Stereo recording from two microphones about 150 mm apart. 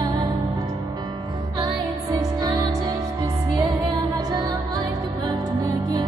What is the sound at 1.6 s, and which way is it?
Music, 25° right (ahead or behind).